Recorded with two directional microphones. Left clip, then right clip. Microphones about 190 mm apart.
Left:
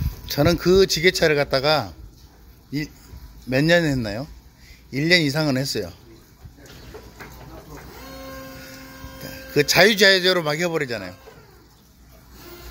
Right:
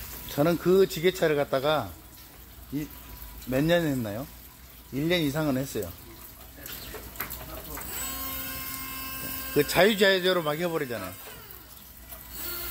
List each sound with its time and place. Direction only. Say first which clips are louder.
0.3 s a man's voice: left 5 dB; 15° left (ahead or behind)
3.4 s speech: left 6 dB; 20° left (ahead or behind)
9.5 s a man's voice: left 6 dB; 10° left (ahead or behind)